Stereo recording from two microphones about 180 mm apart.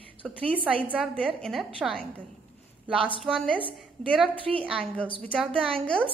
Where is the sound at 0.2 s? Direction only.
10° left (ahead or behind).